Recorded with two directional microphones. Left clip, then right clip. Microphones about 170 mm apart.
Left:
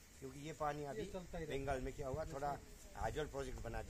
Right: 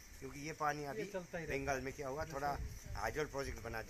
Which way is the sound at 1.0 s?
20° right (ahead or behind).